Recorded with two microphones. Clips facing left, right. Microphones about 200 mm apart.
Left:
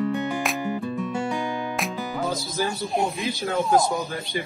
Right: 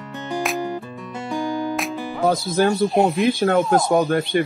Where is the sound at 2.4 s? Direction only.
60° right (ahead or behind).